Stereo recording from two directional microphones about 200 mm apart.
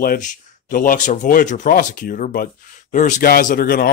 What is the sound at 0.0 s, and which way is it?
Speech, 45° left (ahead or behind).